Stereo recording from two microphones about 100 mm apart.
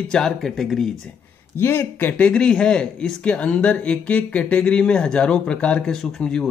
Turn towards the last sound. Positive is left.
turn(degrees=5)  # may be behind; listen again after turning